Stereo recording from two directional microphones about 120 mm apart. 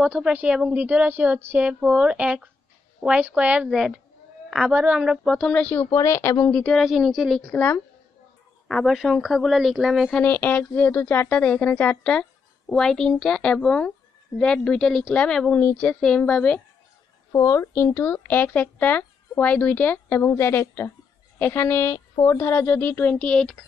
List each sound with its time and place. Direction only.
0.0 s a woman's voice: 10° right (ahead or behind)
5.5 s a woman's voice: 10° left (ahead or behind)
5.9 s a woman's voice: 30° left (ahead or behind)
6.5 s a woman's voice: 5° left (ahead or behind)
8.6 s a woman's voice: centre (ahead or behind)
10.1 s a woman's voice: 15° left (ahead or behind)
17.3 s a woman's voice: 25° left (ahead or behind)
22.5 s a woman's voice: 15° left (ahead or behind)